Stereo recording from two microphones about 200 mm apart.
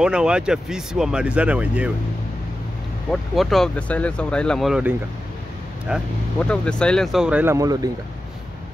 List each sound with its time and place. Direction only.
0.0 s speech: 5° right (ahead or behind)
3.1 s speech: centre (ahead or behind); by 7.9 s 20° right (ahead or behind)